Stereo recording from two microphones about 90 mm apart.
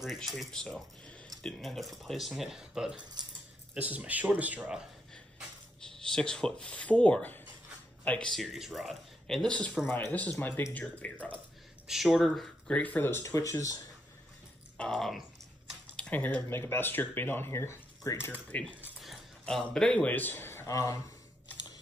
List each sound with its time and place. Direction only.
0.0 s speech: centre (ahead or behind)
3.7 s speech: 15° right (ahead or behind)
5.8 s speech: 5° left (ahead or behind)
8.3 s speech: centre (ahead or behind)
9.8 s speech: 25° left (ahead or behind)
11.9 s speech: 5° right (ahead or behind)
12.7 s speech: 20° left (ahead or behind)
13.2 s speech: 40° left (ahead or behind)
14.8 s speech: 5° left (ahead or behind)
16.0 s speech: 15° left (ahead or behind)
18.3 s speech: 15° left (ahead or behind)
18.9 s a sound: 5° left (ahead or behind)
20.1 s speech: 20° left (ahead or behind); by 21.0 s 35° left (ahead or behind)